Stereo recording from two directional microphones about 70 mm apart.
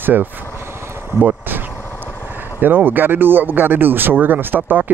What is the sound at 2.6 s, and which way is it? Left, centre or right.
Speech, right.